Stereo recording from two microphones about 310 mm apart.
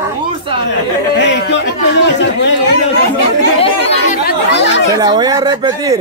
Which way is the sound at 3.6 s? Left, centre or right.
Centre.